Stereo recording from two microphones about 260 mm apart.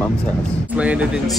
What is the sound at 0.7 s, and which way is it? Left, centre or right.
Speech, centre.